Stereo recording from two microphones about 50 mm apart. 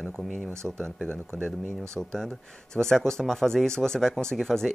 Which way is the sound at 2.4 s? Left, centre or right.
Centre.